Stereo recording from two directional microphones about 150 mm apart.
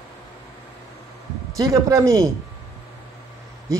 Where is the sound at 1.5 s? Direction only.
20° right (ahead or behind).